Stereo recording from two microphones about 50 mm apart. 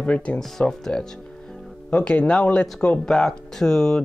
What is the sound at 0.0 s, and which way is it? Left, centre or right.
Speech, left.